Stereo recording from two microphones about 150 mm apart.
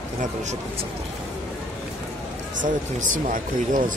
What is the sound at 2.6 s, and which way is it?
Speech, 60° right (ahead or behind).